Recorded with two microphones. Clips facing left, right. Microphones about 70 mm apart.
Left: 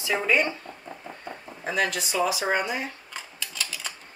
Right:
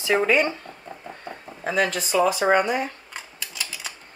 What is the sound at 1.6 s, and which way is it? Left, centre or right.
A man's voice, right.